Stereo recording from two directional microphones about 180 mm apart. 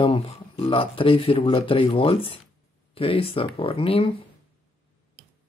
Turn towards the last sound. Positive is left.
turn(degrees=30)  # may be behind; listen again after turning